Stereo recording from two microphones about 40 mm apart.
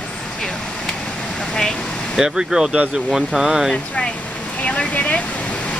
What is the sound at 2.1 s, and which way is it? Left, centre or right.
Speech, centre.